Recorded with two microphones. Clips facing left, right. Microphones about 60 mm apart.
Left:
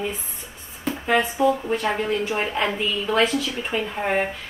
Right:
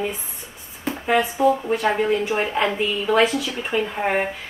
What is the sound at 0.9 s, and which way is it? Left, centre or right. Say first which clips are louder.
A woman's voice: right 1 dB; centre.